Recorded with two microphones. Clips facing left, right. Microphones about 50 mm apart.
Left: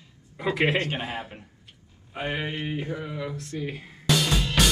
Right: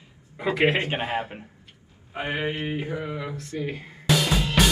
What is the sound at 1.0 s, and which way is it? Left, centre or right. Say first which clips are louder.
Speech: right 5 dB; centre.